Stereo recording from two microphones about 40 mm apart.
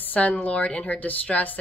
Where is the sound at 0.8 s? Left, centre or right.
Left.